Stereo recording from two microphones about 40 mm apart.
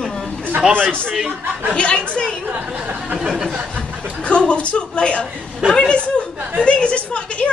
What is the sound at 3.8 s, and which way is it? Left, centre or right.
Speech, left.